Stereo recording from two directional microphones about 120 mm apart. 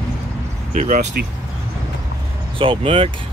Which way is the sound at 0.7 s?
80° right.